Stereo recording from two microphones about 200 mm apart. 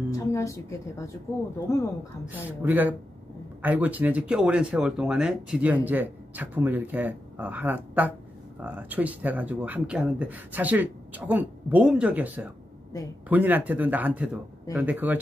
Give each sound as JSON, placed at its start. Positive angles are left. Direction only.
{"t": 0.1, "sound": "a woman's voice", "side_deg": 15}
{"t": 2.2, "sound": "speech", "side_deg": -10}